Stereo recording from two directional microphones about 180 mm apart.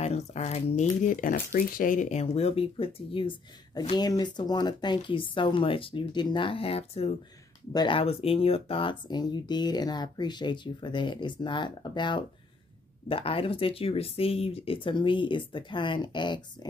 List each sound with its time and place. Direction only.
0.0 s speech: 35° left (ahead or behind)